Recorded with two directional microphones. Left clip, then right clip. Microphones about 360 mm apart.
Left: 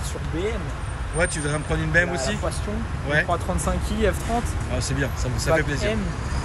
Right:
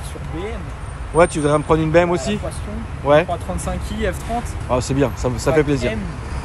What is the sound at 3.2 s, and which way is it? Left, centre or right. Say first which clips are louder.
Speech: even; centre.